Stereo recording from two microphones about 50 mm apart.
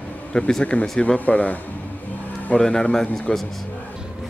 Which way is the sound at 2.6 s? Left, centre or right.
Centre.